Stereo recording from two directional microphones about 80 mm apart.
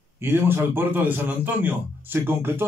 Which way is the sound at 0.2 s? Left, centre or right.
Right.